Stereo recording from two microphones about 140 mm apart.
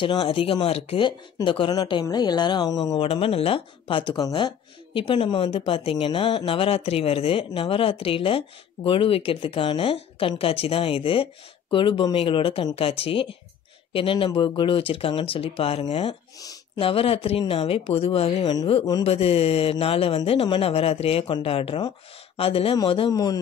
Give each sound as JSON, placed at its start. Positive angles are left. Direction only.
{"t": 0.0, "sound": "speech", "side_deg": 35}
{"t": 3.0, "sound": "speech", "side_deg": 45}
{"t": 23.1, "sound": "a man's voice", "side_deg": 25}